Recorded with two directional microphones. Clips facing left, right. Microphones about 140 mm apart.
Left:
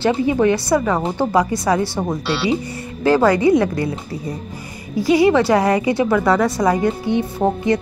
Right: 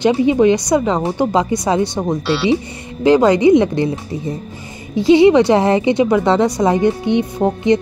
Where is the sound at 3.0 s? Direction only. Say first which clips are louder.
Right 3 dB; 20° right (ahead or behind).